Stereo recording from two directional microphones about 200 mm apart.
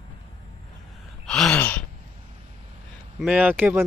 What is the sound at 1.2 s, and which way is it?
Gasp, 5° left (ahead or behind).